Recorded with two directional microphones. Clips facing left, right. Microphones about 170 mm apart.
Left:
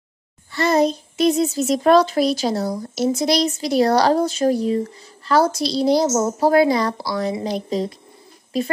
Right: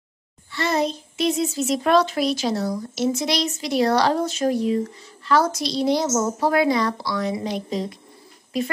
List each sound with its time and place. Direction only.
0.5 s a child's voice: 40° left (ahead or behind)